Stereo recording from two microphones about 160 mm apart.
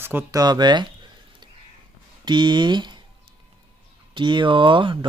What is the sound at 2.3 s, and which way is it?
Speech, 30° right (ahead or behind).